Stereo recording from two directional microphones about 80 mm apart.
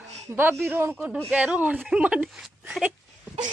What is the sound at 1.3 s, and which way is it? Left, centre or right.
Speech, centre.